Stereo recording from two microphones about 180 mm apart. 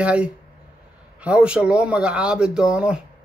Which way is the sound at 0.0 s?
5° right (ahead or behind).